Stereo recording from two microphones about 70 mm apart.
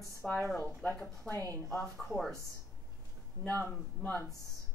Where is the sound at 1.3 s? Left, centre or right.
Centre.